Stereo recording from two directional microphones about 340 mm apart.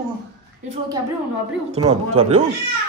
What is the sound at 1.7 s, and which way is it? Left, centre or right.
Speech, centre.